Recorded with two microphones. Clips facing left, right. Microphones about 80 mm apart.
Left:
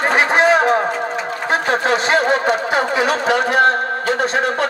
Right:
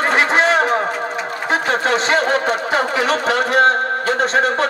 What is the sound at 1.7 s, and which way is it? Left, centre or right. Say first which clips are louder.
Speech: left 1 dB; centre.